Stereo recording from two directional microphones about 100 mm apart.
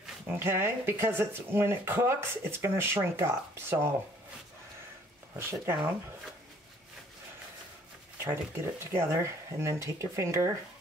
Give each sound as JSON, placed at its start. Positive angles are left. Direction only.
{"t": 0.3, "sound": "speech", "side_deg": -25}
{"t": 5.3, "sound": "speech", "side_deg": -25}
{"t": 8.2, "sound": "speech", "side_deg": -25}